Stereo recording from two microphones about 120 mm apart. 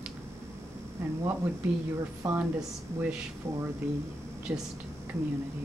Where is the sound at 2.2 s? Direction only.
30° right (ahead or behind).